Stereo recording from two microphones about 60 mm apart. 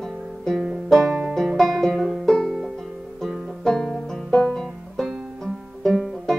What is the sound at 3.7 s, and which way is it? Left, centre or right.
Banjo, centre.